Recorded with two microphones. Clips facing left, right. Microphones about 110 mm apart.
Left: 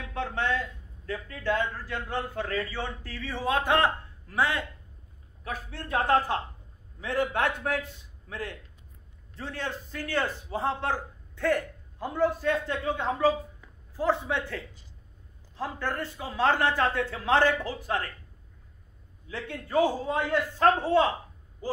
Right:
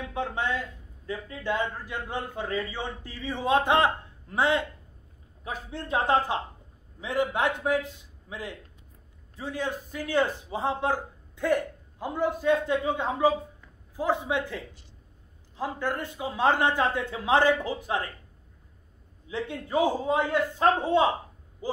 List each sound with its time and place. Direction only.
0.1 s a man's voice: 15° right (ahead or behind)
19.2 s a man's voice: 20° right (ahead or behind)